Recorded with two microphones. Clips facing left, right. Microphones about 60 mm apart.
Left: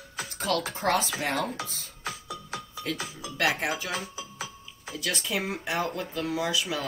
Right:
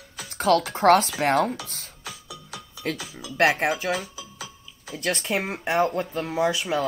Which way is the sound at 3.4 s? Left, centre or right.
Right.